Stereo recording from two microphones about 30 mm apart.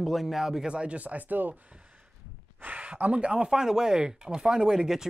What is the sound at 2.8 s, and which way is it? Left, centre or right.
Speech, right.